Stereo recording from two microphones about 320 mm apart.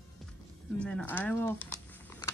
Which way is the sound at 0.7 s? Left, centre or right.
Centre.